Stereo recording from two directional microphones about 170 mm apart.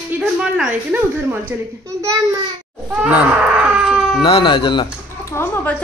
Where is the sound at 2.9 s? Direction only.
10° right (ahead or behind).